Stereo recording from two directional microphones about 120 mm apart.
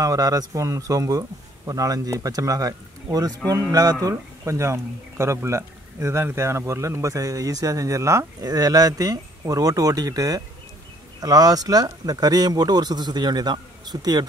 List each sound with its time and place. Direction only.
0.0 s a man's voice: 30° right (ahead or behind)